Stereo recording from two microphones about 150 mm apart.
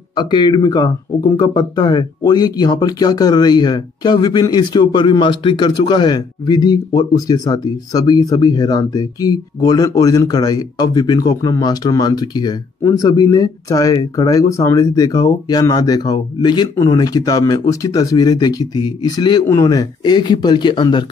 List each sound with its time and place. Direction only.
0.1 s speech: 30° left (ahead or behind)